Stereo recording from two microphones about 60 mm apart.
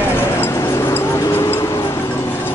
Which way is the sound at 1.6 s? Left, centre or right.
Left.